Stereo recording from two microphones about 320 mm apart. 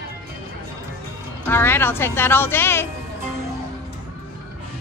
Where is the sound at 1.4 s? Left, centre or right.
Centre.